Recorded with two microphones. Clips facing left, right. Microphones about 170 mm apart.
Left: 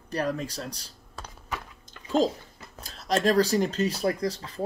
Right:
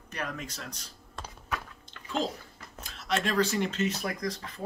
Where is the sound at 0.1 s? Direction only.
35° left (ahead or behind).